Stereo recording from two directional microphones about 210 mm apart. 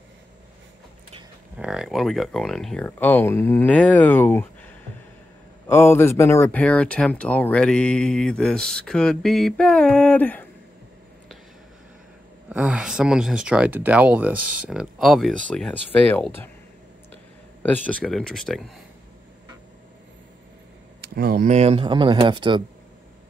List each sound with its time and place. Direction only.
1.6 s speech: centre (ahead or behind)
5.7 s speech: 10° left (ahead or behind)
12.4 s speech: 5° right (ahead or behind)
17.6 s speech: 5° left (ahead or behind)
21.0 s speech: 50° right (ahead or behind); by 22.6 s 20° right (ahead or behind)